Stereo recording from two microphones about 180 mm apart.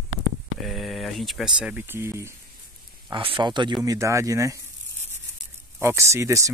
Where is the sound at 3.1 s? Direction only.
30° right (ahead or behind).